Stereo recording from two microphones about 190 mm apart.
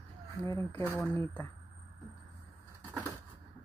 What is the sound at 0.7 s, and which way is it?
Speech, 15° left (ahead or behind).